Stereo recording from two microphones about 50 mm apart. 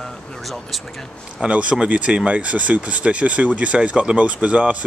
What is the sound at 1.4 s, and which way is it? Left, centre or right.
Speech, right.